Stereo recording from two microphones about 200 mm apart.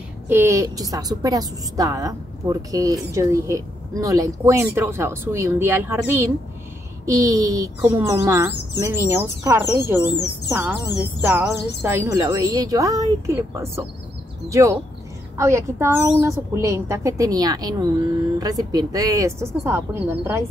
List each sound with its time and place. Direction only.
0.3 s a woman's voice: 15° right (ahead or behind)
11.1 s a woman's voice: 15° right (ahead or behind)